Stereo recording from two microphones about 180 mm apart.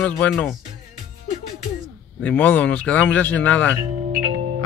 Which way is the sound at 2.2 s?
10° left (ahead or behind).